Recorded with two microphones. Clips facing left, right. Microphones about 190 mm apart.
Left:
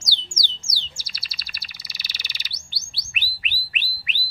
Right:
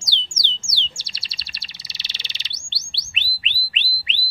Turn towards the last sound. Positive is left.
turn(degrees=-25)  # may be behind; listen again after turning